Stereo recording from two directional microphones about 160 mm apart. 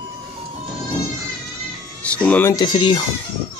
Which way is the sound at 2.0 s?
10° left (ahead or behind).